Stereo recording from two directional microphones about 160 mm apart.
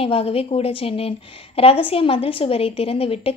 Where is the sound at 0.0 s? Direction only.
35° left (ahead or behind).